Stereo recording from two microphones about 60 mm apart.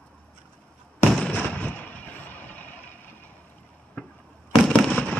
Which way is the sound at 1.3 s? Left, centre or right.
Left.